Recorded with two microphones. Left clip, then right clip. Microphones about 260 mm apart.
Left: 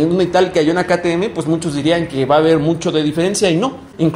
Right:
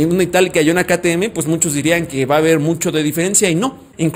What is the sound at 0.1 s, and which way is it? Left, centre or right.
A man's voice, right.